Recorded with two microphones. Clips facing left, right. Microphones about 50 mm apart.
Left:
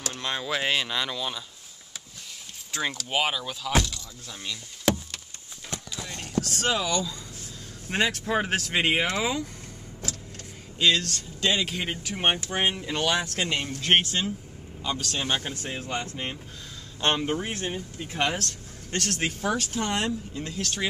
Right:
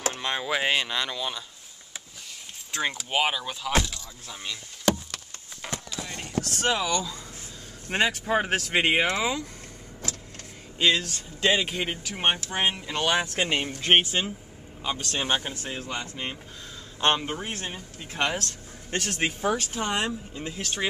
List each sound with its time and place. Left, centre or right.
0.2 s speech: centre
2.7 s speech: centre
5.6 s a sound: right
6.1 s speech: centre
10.8 s speech: centre
13.0 s speech: centre
15.7 s speech: centre
17.3 s speech: centre
17.6 s speech: centre